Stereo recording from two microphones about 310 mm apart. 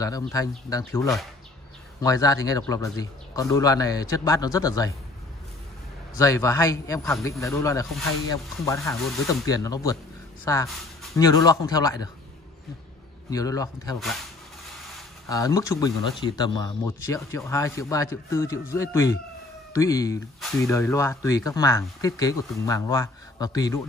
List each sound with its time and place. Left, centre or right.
0.2 s speech: centre
6.1 s speech: centre
13.3 s speech: centre
15.2 s speech: centre